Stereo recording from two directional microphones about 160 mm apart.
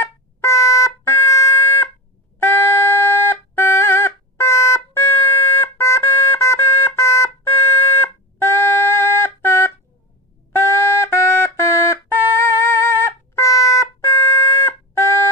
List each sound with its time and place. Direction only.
0.0 s music: 15° left (ahead or behind)
2.4 s a sound: 15° left (ahead or behind)
8.0 s music: 15° left (ahead or behind)